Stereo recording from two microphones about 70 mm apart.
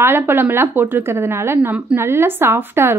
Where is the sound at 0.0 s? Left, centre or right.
Right.